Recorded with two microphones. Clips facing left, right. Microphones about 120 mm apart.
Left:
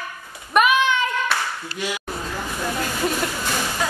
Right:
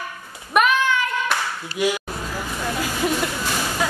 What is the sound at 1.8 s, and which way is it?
Speech, 10° right (ahead or behind).